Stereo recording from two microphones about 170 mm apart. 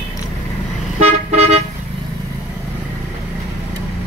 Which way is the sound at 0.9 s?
40° right (ahead or behind).